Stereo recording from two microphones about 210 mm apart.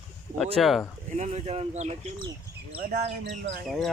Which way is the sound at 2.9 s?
55° right (ahead or behind).